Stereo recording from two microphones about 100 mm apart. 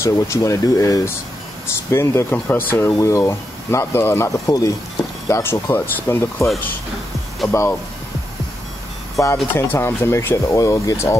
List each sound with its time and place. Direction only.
0.0 s speech: 30° left (ahead or behind)
3.0 s speech: 30° left (ahead or behind)
4.5 s speech: 35° left (ahead or behind)
5.3 s speech: 25° left (ahead or behind)
7.4 s speech: 30° left (ahead or behind)
9.2 s speech: 30° left (ahead or behind)